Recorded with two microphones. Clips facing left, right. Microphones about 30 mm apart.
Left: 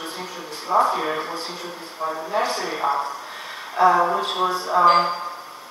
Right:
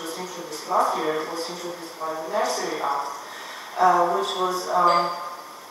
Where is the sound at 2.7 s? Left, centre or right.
Left.